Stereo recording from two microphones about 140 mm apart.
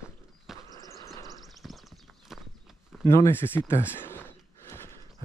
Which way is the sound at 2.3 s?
Centre (ahead or behind).